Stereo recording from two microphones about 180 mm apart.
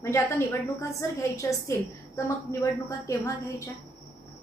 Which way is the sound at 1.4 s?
15° left (ahead or behind).